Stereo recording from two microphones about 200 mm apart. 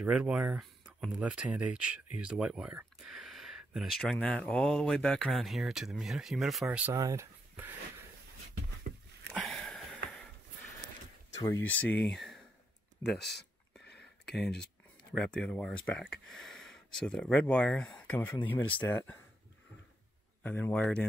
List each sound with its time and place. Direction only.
0.0 s speech: 5° right (ahead or behind)
9.3 s sniff: 5° left (ahead or behind)
11.3 s speech: 15° left (ahead or behind)
13.2 s speech: 55° left (ahead or behind)
13.8 s a sound: 55° left (ahead or behind)
14.4 s speech: 5° left (ahead or behind)
20.4 s speech: 10° left (ahead or behind)